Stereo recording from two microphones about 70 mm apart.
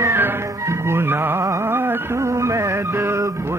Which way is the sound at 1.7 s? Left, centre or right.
Right.